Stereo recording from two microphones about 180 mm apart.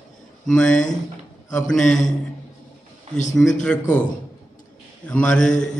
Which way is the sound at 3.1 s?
35° right (ahead or behind).